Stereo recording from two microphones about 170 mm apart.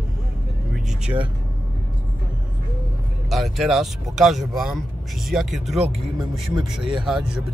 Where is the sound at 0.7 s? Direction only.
5° right (ahead or behind).